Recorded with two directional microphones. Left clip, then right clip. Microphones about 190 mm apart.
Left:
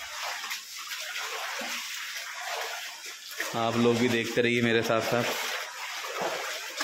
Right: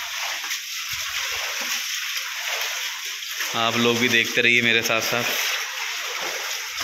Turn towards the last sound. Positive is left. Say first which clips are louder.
# right 7 dB
turn(degrees=25)  # may be behind; listen again after turning